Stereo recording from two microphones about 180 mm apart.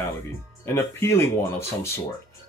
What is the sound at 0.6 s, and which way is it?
Speech, 15° left (ahead or behind).